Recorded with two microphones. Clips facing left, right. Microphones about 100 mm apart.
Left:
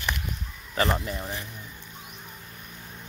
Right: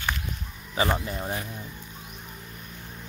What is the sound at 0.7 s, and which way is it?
Speech, centre (ahead or behind).